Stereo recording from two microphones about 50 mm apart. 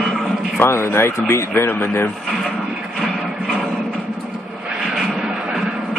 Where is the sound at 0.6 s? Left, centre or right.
Left.